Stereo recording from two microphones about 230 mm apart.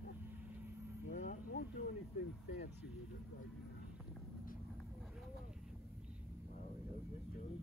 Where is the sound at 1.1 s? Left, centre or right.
Left.